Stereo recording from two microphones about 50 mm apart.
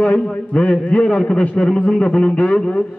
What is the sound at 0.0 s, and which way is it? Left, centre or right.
A man's voice, left.